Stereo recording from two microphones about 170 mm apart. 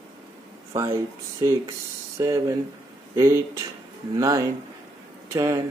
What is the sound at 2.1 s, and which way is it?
Speech, 15° right (ahead or behind).